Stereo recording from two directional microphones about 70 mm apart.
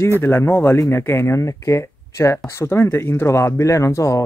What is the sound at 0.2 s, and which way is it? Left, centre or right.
Speech, left.